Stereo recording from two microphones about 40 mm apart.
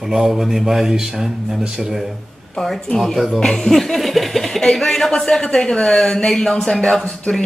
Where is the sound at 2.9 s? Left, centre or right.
Centre.